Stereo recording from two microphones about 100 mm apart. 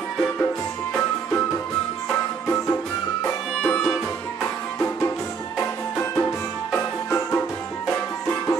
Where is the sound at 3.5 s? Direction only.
5° left (ahead or behind).